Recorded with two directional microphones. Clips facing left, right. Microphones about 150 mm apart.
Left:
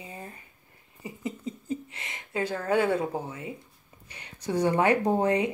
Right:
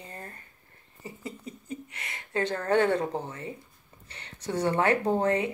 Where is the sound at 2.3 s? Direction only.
10° left (ahead or behind).